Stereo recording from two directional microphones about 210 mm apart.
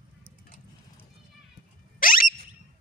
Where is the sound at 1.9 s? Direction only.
40° left (ahead or behind).